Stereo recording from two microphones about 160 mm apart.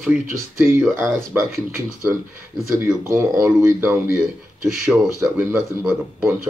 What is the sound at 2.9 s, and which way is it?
Speech, 15° right (ahead or behind).